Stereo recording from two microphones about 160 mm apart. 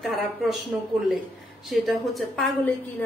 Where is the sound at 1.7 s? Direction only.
Centre (ahead or behind).